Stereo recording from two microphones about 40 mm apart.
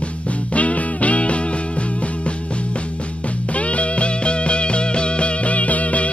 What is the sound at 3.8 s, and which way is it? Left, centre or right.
Music, left.